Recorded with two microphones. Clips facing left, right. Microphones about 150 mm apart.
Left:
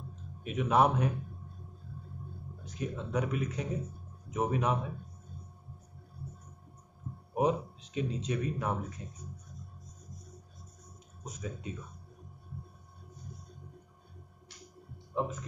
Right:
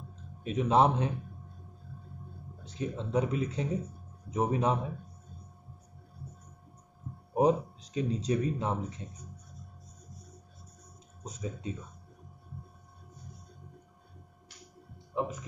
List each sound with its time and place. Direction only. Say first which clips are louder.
0.4 s speech: right 2 dB; 30° right (ahead or behind)
2.6 s speech: right 2 dB; 30° right (ahead or behind)
7.3 s speech: right 4 dB; 35° right (ahead or behind)
11.2 s speech: right 3 dB; 30° right (ahead or behind)
15.1 s speech: right 1 dB; 15° right (ahead or behind)